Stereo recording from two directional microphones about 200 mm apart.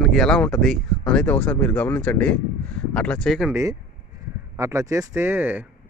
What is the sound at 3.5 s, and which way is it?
A man's voice, 15° right (ahead or behind).